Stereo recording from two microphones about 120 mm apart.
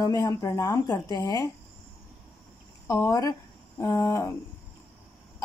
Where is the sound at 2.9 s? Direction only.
25° left (ahead or behind).